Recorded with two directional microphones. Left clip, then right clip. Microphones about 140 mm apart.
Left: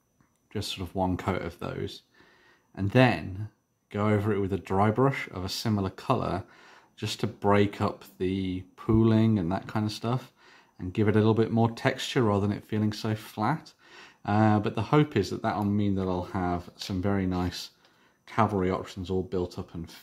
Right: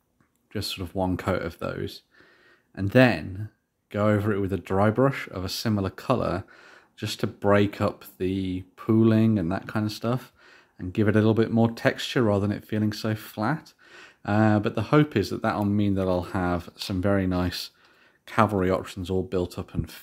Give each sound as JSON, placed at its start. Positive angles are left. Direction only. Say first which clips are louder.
{"t": 0.5, "sound": "speech", "louder": "right 3 dB", "side_deg": -25}